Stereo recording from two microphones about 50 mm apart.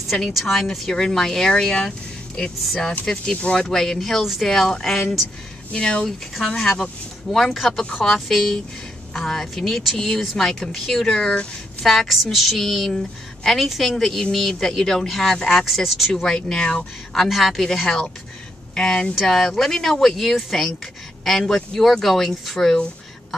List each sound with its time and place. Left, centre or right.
0.1 s speech: centre
4.2 s a woman's voice: centre
4.5 s speech: centre
5.7 s speech: centre
6.0 s speech: centre
11.8 s a woman's voice: centre
15.6 s speech: centre
17.1 s a woman's voice: centre